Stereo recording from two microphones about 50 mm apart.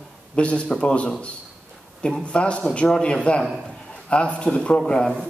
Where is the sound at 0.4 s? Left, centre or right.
Left.